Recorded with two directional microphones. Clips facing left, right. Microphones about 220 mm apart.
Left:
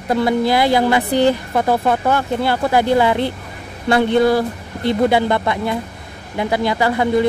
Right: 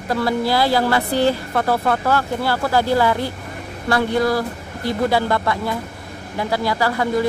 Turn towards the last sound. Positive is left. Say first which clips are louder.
# left 3 dB
turn(degrees=20)  # may be behind; listen again after turning